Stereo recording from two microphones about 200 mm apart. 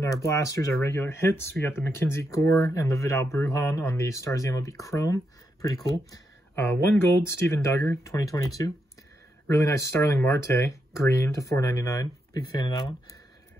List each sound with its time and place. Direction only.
0.0 s speech: 15° left (ahead or behind)
9.6 s speech: 15° left (ahead or behind)